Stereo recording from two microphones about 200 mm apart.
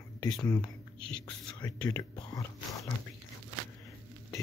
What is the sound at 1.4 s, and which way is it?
Whispering, 20° left (ahead or behind).